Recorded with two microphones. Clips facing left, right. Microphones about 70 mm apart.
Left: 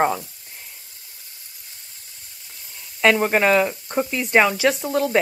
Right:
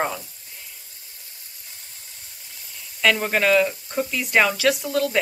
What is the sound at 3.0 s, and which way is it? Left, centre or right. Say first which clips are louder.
Speech: left 3 dB; left.